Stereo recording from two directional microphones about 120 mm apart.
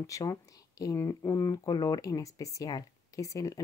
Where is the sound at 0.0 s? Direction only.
25° left (ahead or behind).